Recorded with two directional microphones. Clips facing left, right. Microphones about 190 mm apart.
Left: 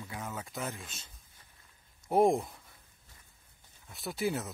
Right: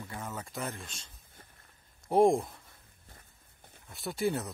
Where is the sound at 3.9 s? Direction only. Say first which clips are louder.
Right 2 dB; centre (ahead or behind).